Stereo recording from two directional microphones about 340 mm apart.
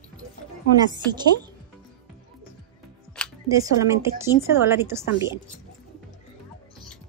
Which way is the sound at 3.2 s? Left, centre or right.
Centre.